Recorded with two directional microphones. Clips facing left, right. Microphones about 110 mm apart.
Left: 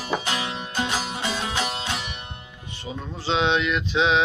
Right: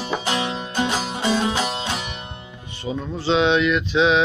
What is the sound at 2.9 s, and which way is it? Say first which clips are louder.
Music: right 7 dB; 30° right (ahead or behind).